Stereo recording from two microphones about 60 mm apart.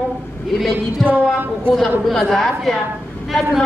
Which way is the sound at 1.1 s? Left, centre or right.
Right.